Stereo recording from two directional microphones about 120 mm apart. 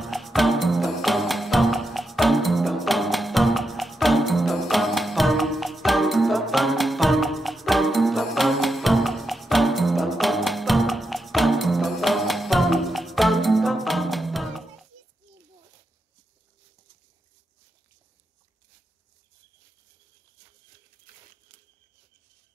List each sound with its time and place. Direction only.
0.0 s music: centre (ahead or behind)